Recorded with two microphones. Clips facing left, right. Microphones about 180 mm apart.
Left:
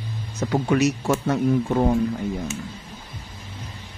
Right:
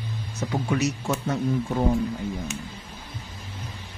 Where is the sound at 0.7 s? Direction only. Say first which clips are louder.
Left 5 dB; 65° left (ahead or behind).